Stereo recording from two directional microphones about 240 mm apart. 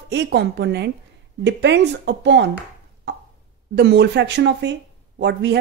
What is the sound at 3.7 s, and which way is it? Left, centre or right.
Speech, right.